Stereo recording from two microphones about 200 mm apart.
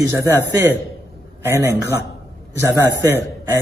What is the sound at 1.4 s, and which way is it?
Speech, 15° right (ahead or behind).